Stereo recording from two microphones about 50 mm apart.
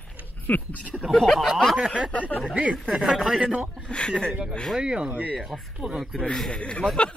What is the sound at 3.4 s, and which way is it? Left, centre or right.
Speech, right.